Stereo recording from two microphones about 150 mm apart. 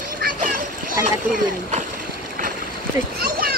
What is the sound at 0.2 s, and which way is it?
Splash, 70° right (ahead or behind).